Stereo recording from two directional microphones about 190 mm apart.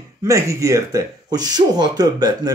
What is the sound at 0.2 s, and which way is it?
Speech, 15° right (ahead or behind).